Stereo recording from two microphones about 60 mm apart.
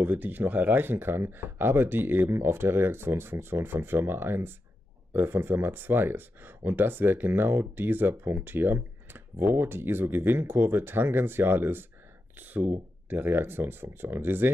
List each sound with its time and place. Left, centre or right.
0.0 s speech: right